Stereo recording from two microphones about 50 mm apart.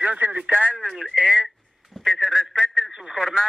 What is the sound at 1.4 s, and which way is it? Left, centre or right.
Speech, centre.